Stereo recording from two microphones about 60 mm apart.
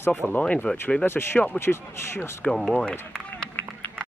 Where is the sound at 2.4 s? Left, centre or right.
Centre.